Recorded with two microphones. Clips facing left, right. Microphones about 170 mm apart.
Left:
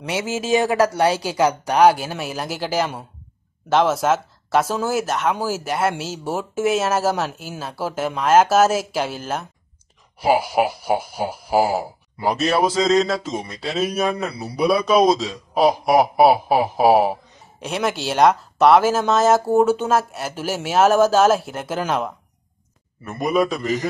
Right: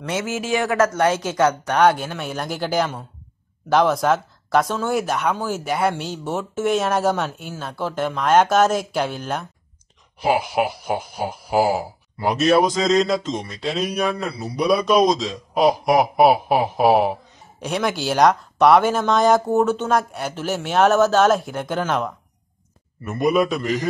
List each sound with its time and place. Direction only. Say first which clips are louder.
0.0 s speech: left 1 dB; 15° left (ahead or behind)
10.5 s speech: left 2 dB; 5° left (ahead or behind)